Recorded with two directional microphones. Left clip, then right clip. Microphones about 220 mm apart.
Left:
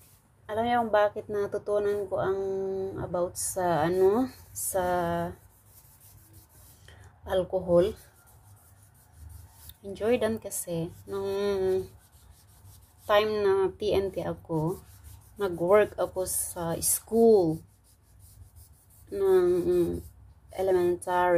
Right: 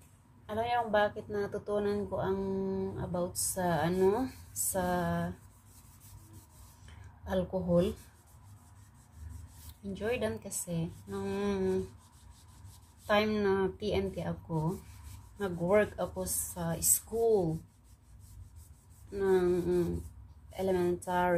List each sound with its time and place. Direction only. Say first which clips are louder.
0.5 s speech: left 5 dB; 30° left (ahead or behind)
7.2 s a woman's voice: left 6 dB; 35° left (ahead or behind)
9.9 s a woman's voice: left 7 dB; 35° left (ahead or behind)
13.0 s a woman's voice: left 5 dB; 35° left (ahead or behind)
19.1 s speech: left 5 dB; 30° left (ahead or behind)
20.5 s a woman's voice: left 6 dB; 35° left (ahead or behind)